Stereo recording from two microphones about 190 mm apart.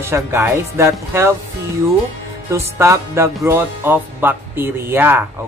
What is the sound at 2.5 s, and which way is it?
Speech, 15° right (ahead or behind).